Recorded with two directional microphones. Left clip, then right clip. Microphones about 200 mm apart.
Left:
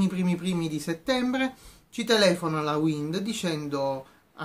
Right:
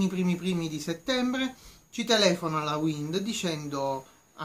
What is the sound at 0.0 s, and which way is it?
Speech, 5° left (ahead or behind).